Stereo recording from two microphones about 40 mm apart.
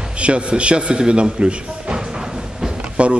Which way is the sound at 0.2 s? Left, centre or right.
Right.